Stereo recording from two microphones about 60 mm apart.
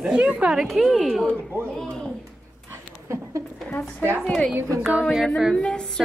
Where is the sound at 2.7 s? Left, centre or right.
Right.